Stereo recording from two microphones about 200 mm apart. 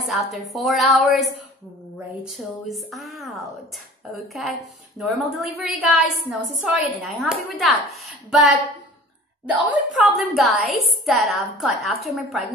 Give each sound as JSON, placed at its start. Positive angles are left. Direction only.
{"t": 0.1, "sound": "a woman's voice", "side_deg": 0}
{"t": 2.2, "sound": "a woman's voice", "side_deg": 0}
{"t": 9.9, "sound": "a woman's voice", "side_deg": 0}